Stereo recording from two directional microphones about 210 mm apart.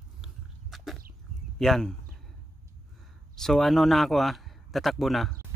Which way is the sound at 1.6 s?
Centre (ahead or behind).